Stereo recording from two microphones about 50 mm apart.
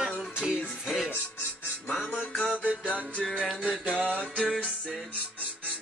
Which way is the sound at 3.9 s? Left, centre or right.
Right.